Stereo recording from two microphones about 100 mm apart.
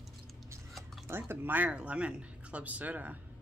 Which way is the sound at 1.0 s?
20° right (ahead or behind).